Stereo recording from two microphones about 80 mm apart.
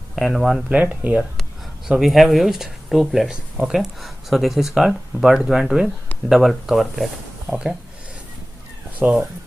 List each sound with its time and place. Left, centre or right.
0.1 s speech: centre
0.7 s speech: centre
1.9 s speech: centre
7.4 s speech: centre
9.0 s speech: centre